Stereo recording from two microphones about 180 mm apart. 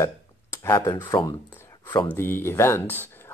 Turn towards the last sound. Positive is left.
turn(degrees=10)  # may be behind; listen again after turning